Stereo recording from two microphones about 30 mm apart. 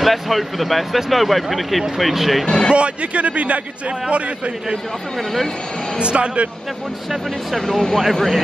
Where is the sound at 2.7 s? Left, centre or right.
Right.